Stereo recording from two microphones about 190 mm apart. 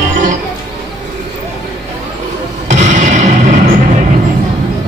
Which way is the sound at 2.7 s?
40° right (ahead or behind).